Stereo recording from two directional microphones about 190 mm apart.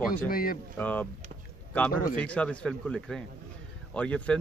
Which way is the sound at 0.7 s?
10° left (ahead or behind).